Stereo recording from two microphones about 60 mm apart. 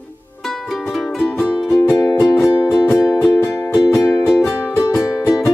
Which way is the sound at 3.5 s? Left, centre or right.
Left.